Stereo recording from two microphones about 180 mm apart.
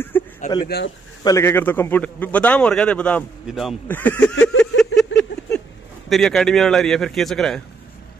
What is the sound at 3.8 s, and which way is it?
Speech, 10° left (ahead or behind).